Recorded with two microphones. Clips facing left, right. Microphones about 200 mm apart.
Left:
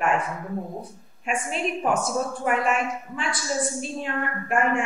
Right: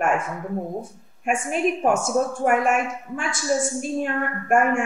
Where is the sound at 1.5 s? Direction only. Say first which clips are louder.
Right 4 dB; 45° right (ahead or behind).